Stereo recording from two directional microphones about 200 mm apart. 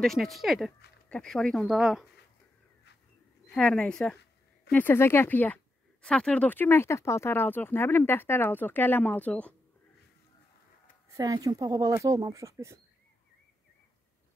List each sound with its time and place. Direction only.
0.0 s speech: centre (ahead or behind)
3.4 s speech: 5° left (ahead or behind)
11.1 s speech: 20° right (ahead or behind)